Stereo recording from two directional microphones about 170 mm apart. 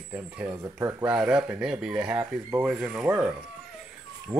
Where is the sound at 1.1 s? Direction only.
5° right (ahead or behind).